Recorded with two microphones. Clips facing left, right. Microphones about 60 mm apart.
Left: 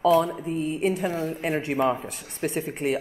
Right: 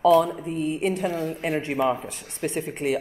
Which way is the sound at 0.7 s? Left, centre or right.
Centre.